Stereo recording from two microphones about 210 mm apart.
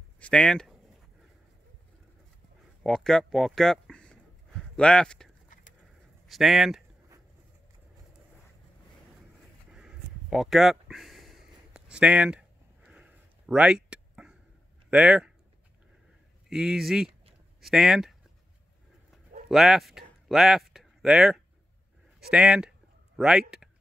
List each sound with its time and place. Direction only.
0.2 s speech: 5° left (ahead or behind)
2.8 s speech: centre (ahead or behind)
9.7 s a sound: 5° right (ahead or behind)
14.9 s speech: 5° right (ahead or behind)
16.4 s speech: centre (ahead or behind)
19.5 s speech: centre (ahead or behind)
22.3 s a sound: 5° right (ahead or behind)